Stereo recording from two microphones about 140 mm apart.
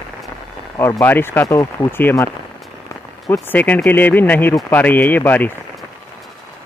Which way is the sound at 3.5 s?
10° left (ahead or behind).